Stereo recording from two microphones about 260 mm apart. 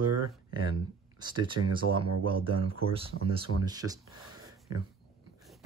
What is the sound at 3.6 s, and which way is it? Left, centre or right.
Speech, centre.